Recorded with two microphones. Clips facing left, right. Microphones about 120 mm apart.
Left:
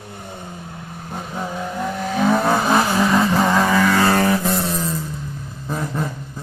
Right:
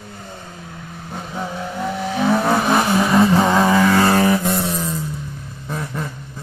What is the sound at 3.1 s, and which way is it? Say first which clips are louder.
Vehicle: right 5 dB; 10° right (ahead or behind).